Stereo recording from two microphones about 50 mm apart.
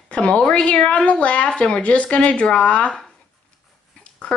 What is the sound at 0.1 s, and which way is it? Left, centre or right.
A woman's voice, left.